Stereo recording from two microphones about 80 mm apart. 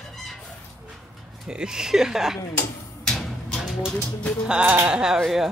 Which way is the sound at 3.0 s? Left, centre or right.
Centre.